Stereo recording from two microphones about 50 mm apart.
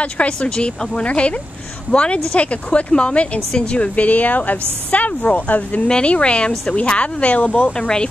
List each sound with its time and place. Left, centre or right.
0.0 s speech: left
5.9 s speech: left